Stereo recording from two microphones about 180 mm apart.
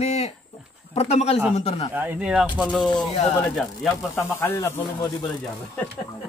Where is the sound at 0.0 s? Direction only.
35° left (ahead or behind).